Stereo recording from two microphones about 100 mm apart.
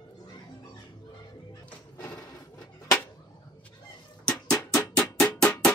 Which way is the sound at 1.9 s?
15° left (ahead or behind).